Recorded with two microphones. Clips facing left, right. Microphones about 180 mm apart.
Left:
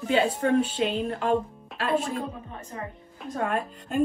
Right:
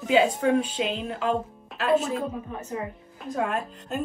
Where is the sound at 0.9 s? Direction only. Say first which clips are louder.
Left 1 dB; 40° left (ahead or behind).